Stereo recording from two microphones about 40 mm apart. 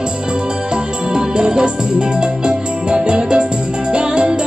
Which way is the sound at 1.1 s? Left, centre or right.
Right.